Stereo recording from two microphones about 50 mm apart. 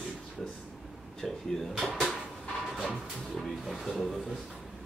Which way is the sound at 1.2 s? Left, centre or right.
Centre.